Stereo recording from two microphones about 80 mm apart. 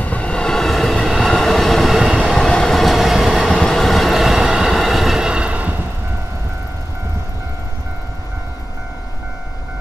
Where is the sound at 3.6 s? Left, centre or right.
Centre.